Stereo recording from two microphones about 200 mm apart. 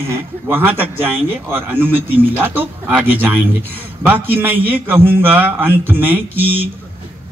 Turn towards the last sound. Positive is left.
turn(degrees=-10)  # may be behind; listen again after turning